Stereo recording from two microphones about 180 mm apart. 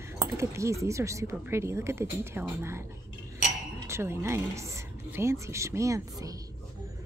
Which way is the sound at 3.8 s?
15° right (ahead or behind).